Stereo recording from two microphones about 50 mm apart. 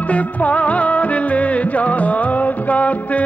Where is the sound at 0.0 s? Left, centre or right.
Left.